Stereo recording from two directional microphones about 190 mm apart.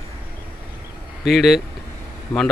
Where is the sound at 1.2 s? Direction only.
Centre (ahead or behind).